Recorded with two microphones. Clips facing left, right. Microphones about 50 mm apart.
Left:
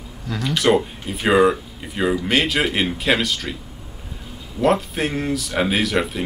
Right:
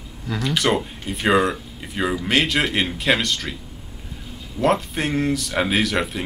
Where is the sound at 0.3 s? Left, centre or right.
Centre.